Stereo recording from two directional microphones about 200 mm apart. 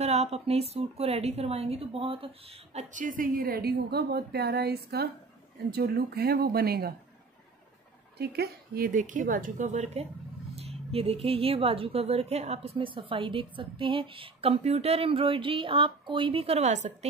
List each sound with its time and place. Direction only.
0.0 s a woman's voice: 30° right (ahead or behind); by 6.9 s 50° right (ahead or behind)
8.2 s a woman's voice: 50° right (ahead or behind); by 16.9 s 35° right (ahead or behind)